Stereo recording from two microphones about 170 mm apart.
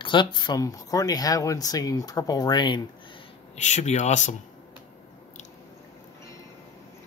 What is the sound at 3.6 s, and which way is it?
Speech, 45° left (ahead or behind).